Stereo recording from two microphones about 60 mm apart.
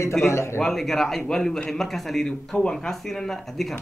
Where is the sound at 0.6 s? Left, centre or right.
Centre.